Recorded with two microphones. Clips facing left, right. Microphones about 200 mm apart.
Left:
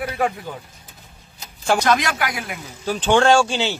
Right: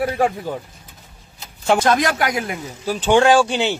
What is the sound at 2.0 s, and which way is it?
Speech, 40° right (ahead or behind).